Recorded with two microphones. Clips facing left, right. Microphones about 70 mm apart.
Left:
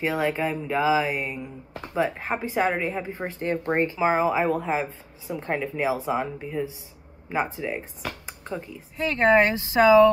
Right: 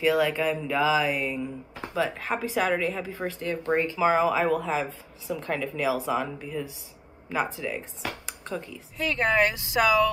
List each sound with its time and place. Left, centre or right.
0.0 s speech: left
8.9 s speech: left